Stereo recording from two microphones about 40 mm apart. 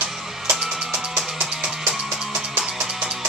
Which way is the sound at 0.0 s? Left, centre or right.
Centre.